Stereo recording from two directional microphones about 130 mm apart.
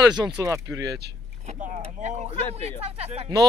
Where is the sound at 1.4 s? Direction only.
65° right (ahead or behind).